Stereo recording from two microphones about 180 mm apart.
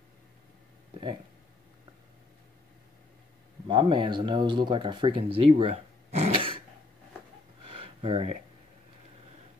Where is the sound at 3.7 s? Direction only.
25° right (ahead or behind).